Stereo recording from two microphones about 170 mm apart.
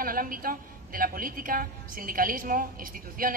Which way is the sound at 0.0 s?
55° right (ahead or behind).